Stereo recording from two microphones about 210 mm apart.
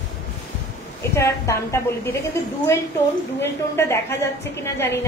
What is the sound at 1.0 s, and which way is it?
A woman's voice, 15° left (ahead or behind).